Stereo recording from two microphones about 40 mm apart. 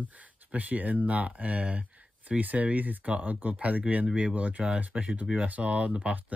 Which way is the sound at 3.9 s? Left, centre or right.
Right.